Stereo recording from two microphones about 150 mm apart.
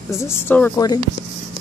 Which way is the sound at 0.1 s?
20° left (ahead or behind).